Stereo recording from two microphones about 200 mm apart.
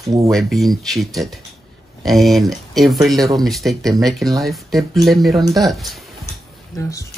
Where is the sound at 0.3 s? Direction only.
Centre (ahead or behind).